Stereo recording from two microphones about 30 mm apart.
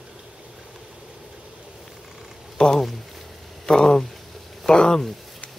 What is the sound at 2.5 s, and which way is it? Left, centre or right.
Speech, left.